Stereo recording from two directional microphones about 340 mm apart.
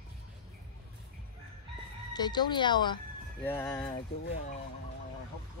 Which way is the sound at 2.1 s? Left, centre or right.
Centre.